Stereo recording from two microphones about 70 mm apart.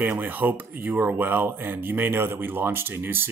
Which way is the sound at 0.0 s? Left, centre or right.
Right.